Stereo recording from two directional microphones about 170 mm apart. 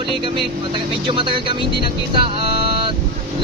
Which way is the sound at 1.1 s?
30° right (ahead or behind).